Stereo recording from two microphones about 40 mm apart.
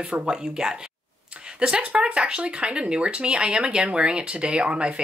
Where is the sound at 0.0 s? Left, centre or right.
Right.